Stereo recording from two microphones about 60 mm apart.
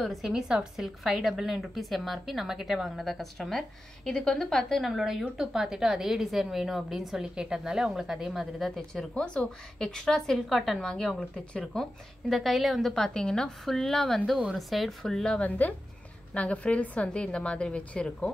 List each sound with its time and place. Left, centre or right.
0.0 s a woman's voice: centre
8.6 s a woman's voice: centre
15.3 s a woman's voice: left